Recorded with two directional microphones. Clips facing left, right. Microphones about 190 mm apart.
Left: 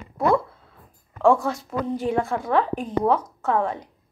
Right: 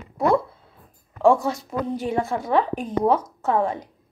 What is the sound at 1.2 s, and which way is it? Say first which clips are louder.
Speech: right 1 dB; 20° right (ahead or behind).